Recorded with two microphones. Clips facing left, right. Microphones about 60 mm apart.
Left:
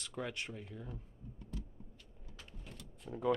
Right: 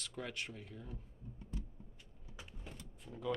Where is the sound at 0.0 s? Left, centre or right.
Centre.